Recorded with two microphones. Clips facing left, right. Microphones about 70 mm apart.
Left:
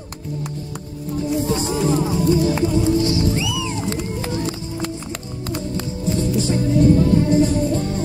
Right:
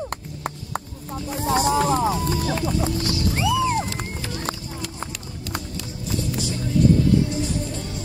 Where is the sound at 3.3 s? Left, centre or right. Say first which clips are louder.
Right 3 dB; right.